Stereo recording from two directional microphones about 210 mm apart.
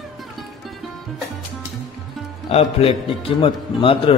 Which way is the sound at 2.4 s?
30° left (ahead or behind).